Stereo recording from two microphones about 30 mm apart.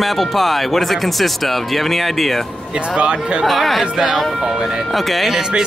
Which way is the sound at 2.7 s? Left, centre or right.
Right.